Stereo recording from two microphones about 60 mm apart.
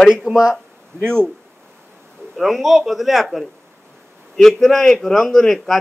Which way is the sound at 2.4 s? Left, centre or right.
Centre.